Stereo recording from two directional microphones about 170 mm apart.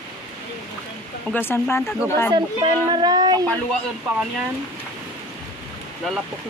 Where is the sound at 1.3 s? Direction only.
15° left (ahead or behind).